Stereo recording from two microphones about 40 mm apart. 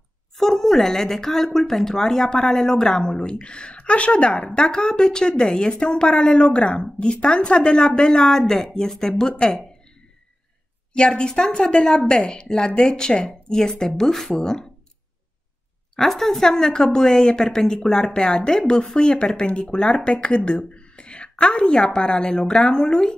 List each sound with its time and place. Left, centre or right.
0.4 s a woman's voice: centre
10.9 s a woman's voice: left
16.0 s a woman's voice: centre